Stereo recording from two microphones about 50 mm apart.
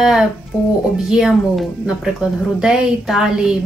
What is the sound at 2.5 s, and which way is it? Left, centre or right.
Speech, centre.